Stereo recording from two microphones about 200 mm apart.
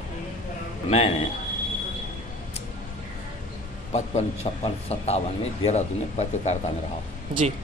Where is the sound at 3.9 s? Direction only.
30° left (ahead or behind).